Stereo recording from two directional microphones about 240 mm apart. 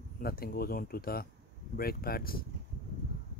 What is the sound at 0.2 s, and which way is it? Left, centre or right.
Speech, left.